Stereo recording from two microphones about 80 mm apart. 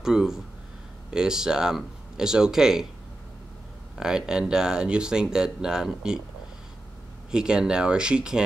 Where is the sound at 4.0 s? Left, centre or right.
Centre.